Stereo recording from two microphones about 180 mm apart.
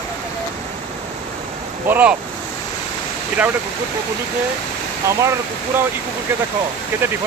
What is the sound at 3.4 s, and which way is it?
Speech, 5° right (ahead or behind).